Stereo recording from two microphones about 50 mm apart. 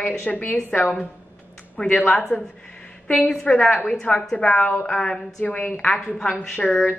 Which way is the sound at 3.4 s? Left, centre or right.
Left.